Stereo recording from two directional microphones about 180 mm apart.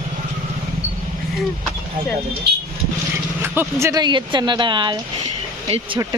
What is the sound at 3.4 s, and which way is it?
Speech, 10° right (ahead or behind).